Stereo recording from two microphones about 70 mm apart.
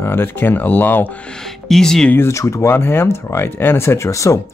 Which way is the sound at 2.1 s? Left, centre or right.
Left.